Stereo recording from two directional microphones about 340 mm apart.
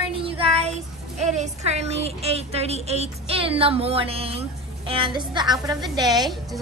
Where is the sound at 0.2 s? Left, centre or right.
Centre.